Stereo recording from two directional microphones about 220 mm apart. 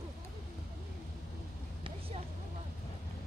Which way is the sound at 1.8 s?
25° right (ahead or behind).